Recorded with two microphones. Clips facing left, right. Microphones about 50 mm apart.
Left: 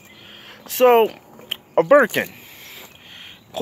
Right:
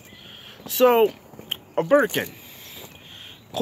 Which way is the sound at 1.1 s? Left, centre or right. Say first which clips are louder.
Left 1 dB; left.